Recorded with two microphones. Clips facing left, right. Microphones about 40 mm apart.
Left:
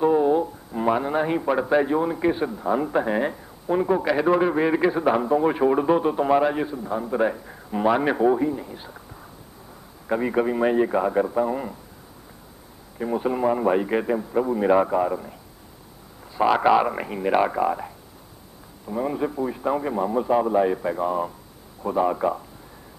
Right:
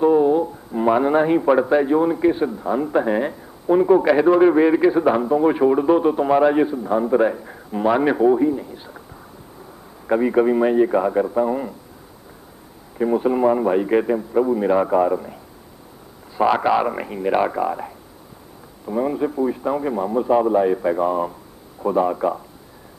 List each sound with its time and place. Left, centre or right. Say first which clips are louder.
0.0 s a sound: right 4 dB; centre
1.0 s a man's voice: right 7 dB; centre
10.0 s a man's voice: right 6 dB; centre
12.9 s a man's voice: right 6 dB; centre
16.3 s a man's voice: right 1 dB; centre
18.9 s a man's voice: right 4 dB; centre